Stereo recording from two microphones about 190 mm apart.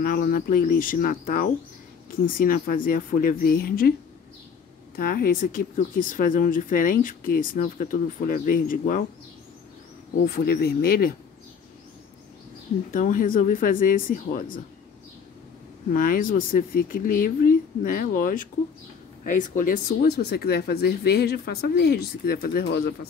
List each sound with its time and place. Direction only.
0.0 s speech: 50° left (ahead or behind)
4.9 s speech: 50° left (ahead or behind)
10.2 s speech: 50° left (ahead or behind)
12.9 s speech: 45° left (ahead or behind)
15.9 s speech: 45° left (ahead or behind)